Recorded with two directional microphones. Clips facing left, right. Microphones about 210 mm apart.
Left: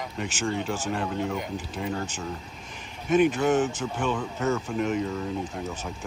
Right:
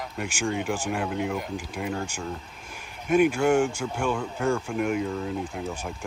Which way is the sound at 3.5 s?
10° right (ahead or behind).